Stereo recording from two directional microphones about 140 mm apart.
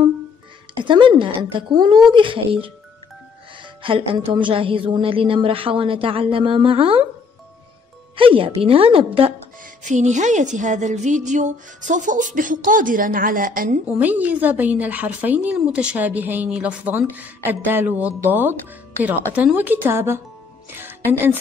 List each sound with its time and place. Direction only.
0.8 s a woman's voice: 35° right (ahead or behind)
3.8 s a woman's voice: 40° right (ahead or behind)
8.2 s a woman's voice: 40° right (ahead or behind)
9.8 s a woman's voice: 60° right (ahead or behind); by 13.7 s 75° right (ahead or behind)
13.9 s speech: 10° right (ahead or behind)